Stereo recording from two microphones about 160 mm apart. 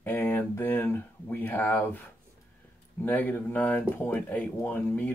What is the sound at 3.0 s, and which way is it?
Speech, 10° left (ahead or behind).